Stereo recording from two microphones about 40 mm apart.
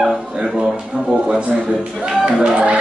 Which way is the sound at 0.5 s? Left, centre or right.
Centre.